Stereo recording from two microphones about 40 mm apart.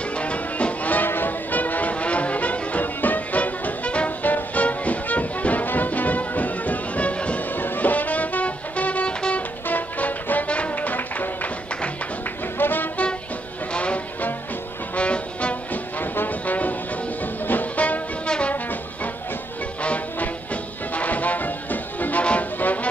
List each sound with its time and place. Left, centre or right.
0.1 s music: left
0.9 s music: left
7.5 s music: left
12.5 s music: left
13.7 s music: left
15.7 s music: left
19.8 s music: left
22.2 s music: left
22.6 s music: left